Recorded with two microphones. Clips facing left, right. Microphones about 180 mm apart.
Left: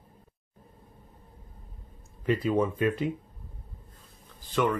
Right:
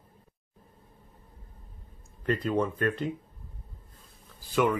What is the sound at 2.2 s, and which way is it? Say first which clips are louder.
Speech: left 2 dB; 5° left (ahead or behind).